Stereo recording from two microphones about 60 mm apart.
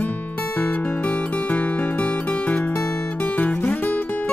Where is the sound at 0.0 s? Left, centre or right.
Left.